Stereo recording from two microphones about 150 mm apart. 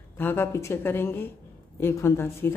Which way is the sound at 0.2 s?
15° left (ahead or behind).